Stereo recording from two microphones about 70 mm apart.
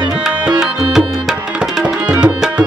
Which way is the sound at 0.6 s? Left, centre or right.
Centre.